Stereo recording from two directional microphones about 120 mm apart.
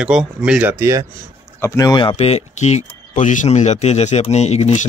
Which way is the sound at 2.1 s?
65° left (ahead or behind).